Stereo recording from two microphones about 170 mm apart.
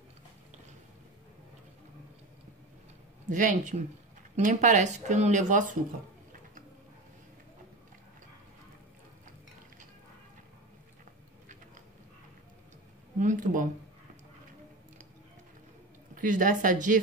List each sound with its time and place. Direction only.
3.3 s speech: 50° right (ahead or behind)
13.2 s speech: 50° right (ahead or behind)
16.2 s speech: 50° right (ahead or behind)